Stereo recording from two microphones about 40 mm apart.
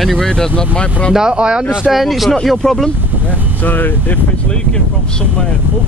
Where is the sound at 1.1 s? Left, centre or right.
Centre.